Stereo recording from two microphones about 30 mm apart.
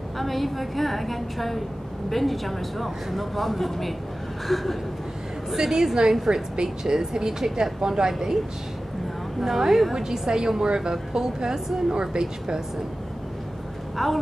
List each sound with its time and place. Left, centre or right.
0.2 s speech: centre
5.6 s a woman's voice: centre
9.4 s a woman's voice: centre
10.1 s a woman's voice: right
13.9 s speech: centre